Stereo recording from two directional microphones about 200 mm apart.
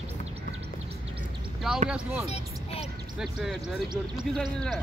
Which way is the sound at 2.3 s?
30° left (ahead or behind).